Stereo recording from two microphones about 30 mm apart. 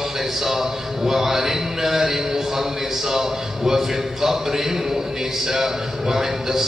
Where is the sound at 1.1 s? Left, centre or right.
Centre.